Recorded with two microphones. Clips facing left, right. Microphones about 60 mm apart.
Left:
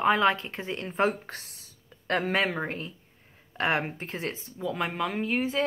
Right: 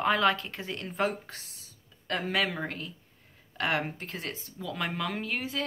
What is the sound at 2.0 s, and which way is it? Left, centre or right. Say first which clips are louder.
Speech: left 3 dB; left.